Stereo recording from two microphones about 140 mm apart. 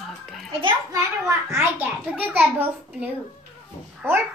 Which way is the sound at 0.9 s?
20° right (ahead or behind).